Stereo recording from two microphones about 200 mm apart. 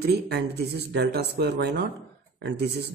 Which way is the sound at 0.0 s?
55° right (ahead or behind).